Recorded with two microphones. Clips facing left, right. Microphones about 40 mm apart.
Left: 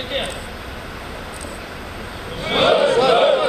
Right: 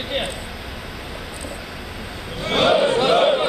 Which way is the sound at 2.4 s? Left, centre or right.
Centre.